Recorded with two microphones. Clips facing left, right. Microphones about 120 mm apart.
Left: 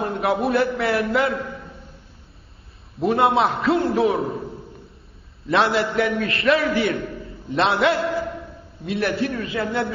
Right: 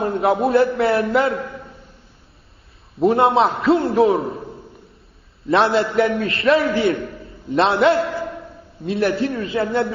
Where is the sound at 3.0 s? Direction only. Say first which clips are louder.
Right 3 dB; 30° right (ahead or behind).